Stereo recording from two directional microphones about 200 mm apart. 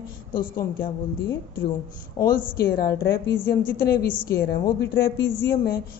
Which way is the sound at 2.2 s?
15° left (ahead or behind).